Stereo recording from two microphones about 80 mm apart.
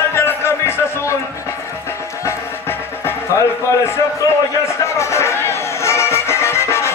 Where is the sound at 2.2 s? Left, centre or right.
Left.